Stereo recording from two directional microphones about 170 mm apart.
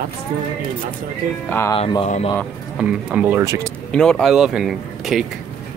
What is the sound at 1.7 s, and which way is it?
Speech, 30° left (ahead or behind).